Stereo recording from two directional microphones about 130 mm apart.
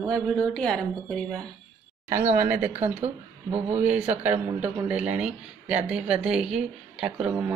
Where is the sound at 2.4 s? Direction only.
20° right (ahead or behind).